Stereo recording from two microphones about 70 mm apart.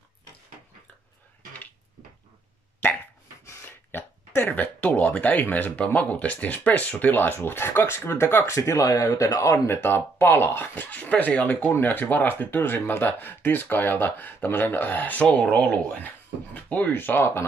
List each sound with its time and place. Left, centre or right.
4.4 s speech: left
8.5 s speech: left
9.7 s speech: left